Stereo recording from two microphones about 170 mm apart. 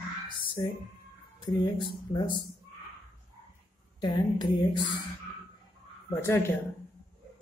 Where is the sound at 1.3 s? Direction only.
25° left (ahead or behind).